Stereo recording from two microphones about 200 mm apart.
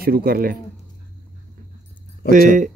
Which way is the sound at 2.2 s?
50° left (ahead or behind).